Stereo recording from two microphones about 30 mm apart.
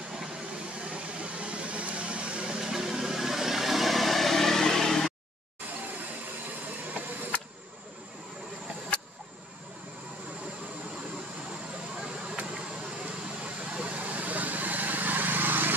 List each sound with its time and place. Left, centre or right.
0.8 s a sound: right
2.6 s vehicle: centre
13.0 s vehicle: right